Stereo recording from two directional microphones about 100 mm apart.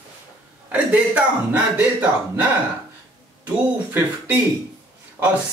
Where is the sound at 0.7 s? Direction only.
15° right (ahead or behind).